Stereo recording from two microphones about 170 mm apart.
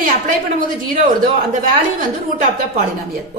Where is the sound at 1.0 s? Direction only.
50° right (ahead or behind).